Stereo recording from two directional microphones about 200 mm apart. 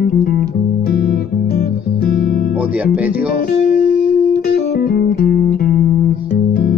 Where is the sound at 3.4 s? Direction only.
45° left (ahead or behind).